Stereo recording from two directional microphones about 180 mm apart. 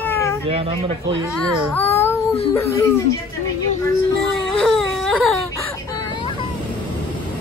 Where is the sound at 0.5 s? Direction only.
30° right (ahead or behind).